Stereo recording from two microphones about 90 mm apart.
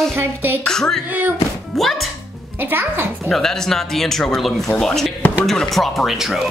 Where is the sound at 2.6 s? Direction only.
25° right (ahead or behind).